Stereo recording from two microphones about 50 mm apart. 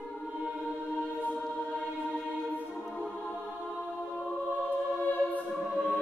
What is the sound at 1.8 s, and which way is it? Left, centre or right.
Choir, left.